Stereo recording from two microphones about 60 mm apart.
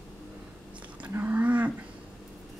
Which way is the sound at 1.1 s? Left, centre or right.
Right.